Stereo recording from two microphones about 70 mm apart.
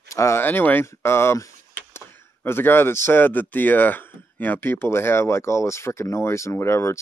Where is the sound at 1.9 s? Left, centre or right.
Left.